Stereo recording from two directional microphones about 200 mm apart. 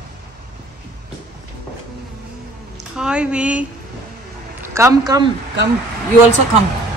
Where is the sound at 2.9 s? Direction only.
5° right (ahead or behind).